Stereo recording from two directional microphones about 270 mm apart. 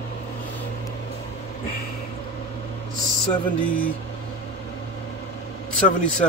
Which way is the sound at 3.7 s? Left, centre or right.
Centre.